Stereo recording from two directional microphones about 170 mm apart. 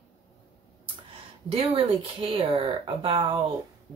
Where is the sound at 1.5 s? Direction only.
35° right (ahead or behind).